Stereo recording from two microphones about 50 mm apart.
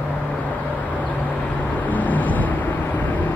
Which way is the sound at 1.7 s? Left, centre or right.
Left.